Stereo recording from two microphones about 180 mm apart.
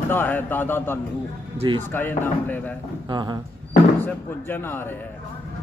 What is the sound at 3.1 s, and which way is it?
Speech, 25° right (ahead or behind).